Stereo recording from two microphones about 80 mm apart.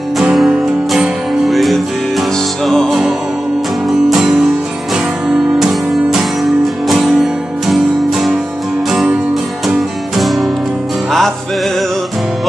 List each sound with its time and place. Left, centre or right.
0.2 s music: centre